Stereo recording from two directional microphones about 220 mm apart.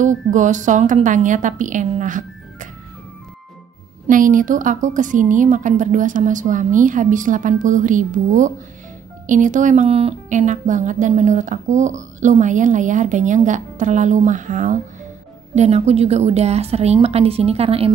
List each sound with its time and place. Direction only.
0.3 s speech: 35° right (ahead or behind)
4.1 s a woman's voice: 35° right (ahead or behind)